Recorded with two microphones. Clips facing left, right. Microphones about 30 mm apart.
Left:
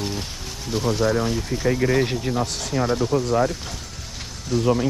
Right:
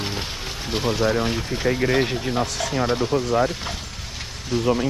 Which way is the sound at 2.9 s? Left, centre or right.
Right.